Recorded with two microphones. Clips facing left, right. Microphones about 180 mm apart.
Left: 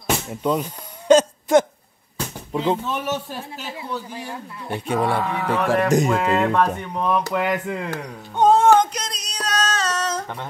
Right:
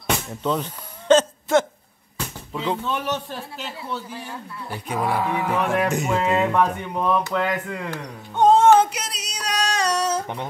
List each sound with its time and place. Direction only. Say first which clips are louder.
0.0 s a sound: left 2 dB; 10° left (ahead or behind)
2.5 s speech: left 5 dB; 25° left (ahead or behind)
2.8 s speech: even; 5° left (ahead or behind)
4.1 s speech: left 2 dB; 20° left (ahead or behind)
5.2 s speech: left 1 dB; 10° right (ahead or behind)
7.3 s speech: left 2 dB; 10° left (ahead or behind)
8.4 s a sound: even; centre (ahead or behind); by 10.5 s 15° right (ahead or behind)